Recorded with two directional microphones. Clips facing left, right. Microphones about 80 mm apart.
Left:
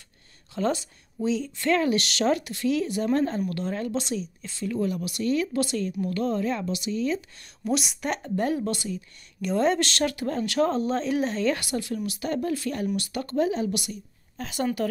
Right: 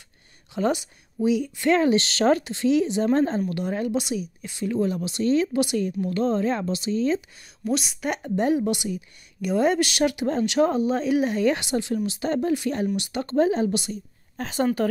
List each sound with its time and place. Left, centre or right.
0.6 s a woman's voice: centre; by 7.2 s right
7.6 s a woman's voice: centre
8.2 s a woman's voice: centre
14.4 s a woman's voice: right